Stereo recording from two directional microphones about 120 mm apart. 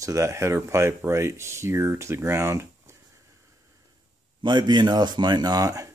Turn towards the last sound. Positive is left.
turn(degrees=-30)  # may be behind; listen again after turning